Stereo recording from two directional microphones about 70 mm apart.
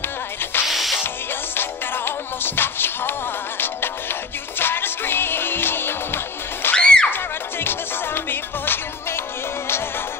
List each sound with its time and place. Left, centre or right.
0.4 s music: left
0.7 s music: centre
1.0 s music: left
6.7 s music: centre
7.1 s music: left